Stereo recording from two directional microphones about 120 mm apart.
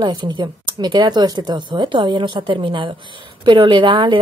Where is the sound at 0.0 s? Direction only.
40° right (ahead or behind).